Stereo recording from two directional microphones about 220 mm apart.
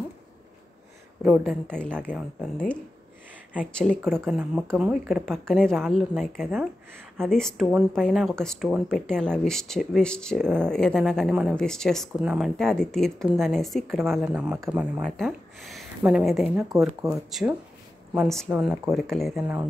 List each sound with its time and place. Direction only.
1.2 s speech: 5° right (ahead or behind)
16.5 s speech: 15° right (ahead or behind)
17.3 s speech: centre (ahead or behind)